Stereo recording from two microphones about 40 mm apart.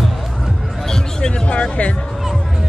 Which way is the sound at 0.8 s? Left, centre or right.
Centre.